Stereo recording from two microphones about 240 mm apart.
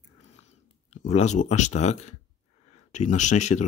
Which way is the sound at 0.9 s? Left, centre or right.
Left.